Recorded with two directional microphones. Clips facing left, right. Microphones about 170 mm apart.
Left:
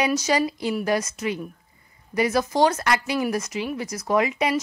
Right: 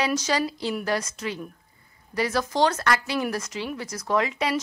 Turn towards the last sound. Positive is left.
turn(degrees=10)  # may be behind; listen again after turning